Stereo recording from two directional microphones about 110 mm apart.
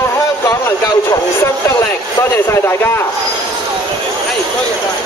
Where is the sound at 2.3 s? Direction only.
20° left (ahead or behind).